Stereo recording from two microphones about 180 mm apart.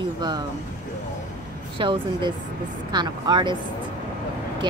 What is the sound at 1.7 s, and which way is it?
Speech, 30° right (ahead or behind).